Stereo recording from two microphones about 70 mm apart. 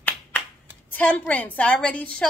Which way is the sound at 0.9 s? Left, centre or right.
Left.